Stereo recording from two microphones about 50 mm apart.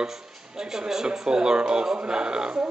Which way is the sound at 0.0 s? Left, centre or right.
Centre.